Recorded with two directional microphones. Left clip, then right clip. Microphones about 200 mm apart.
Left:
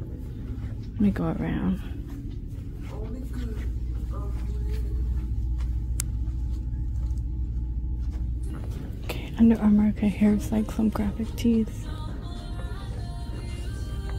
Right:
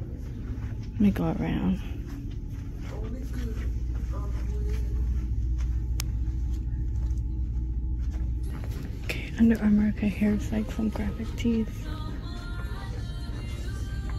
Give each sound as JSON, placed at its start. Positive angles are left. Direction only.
{"t": 1.0, "sound": "speech", "side_deg": 0}
{"t": 9.0, "sound": "a woman's voice", "side_deg": 15}